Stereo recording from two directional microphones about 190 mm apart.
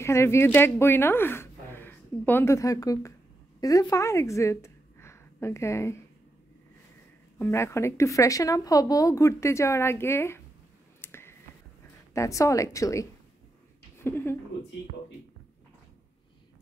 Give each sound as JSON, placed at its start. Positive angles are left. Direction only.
{"t": 0.0, "sound": "a woman's voice", "side_deg": 15}
{"t": 7.3, "sound": "speech", "side_deg": 15}
{"t": 11.0, "sound": "finger snapping", "side_deg": 15}
{"t": 12.1, "sound": "speech", "side_deg": 15}